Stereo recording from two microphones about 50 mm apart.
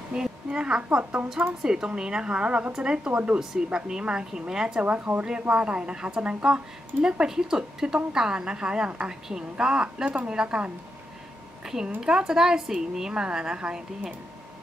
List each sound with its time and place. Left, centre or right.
0.1 s a woman's voice: centre
3.1 s speech: right
3.3 s speech: centre
4.8 s a woman's voice: right
10.0 s a woman's voice: right